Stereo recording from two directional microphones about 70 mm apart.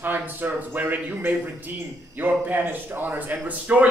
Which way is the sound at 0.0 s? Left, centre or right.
Right.